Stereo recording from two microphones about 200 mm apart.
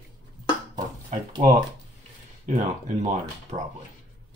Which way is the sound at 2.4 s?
35° right (ahead or behind).